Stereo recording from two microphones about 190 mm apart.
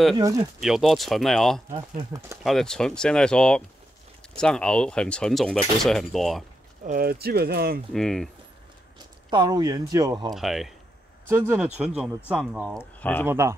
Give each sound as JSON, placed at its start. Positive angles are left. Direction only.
{"t": 0.6, "sound": "speech", "side_deg": 0}
{"t": 1.7, "sound": "speech", "side_deg": -20}
{"t": 2.4, "sound": "speech", "side_deg": 0}
{"t": 6.8, "sound": "speech", "side_deg": -45}
{"t": 7.9, "sound": "speech", "side_deg": 0}
{"t": 9.3, "sound": "speech", "side_deg": -20}
{"t": 10.3, "sound": "speech", "side_deg": 0}
{"t": 11.2, "sound": "speech", "side_deg": -15}
{"t": 13.0, "sound": "speech", "side_deg": 10}
{"t": 13.3, "sound": "speech", "side_deg": -15}